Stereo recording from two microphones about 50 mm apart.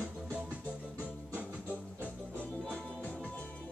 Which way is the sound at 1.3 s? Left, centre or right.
Right.